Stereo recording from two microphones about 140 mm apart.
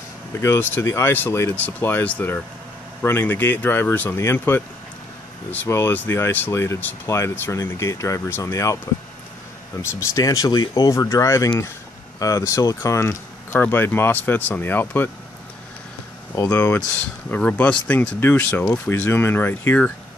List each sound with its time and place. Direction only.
0.3 s speech: 20° left (ahead or behind)
10.1 s speech: 25° left (ahead or behind)
16.3 s speech: 20° left (ahead or behind)